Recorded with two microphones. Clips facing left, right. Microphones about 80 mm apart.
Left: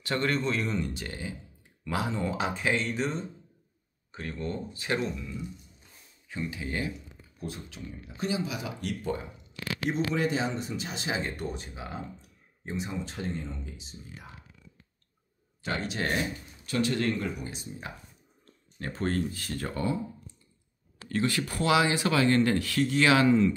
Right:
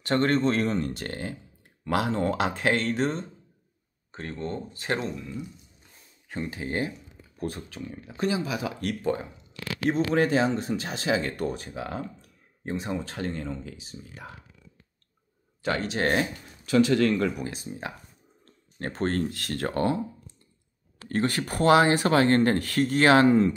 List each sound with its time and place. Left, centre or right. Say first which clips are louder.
0.0 s speech: right 6 dB; right
4.1 s speech: right 2 dB; right
7.3 s speech: right 6 dB; right
7.8 s speech: right 6 dB; right
10.1 s speech: right 6 dB; right
12.2 s a sound: right 5 dB; right
13.2 s speech: right 3 dB; right
15.6 s speech: right 5 dB; right
16.0 s speech: right 6 dB; right
17.0 s speech: right 6 dB; right
19.0 s speech: right 2 dB; right
19.3 s speech: right 5 dB; right
21.1 s speech: right 2 dB; right